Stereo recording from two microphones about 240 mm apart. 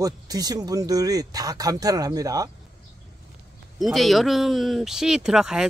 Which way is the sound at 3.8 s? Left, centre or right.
Centre.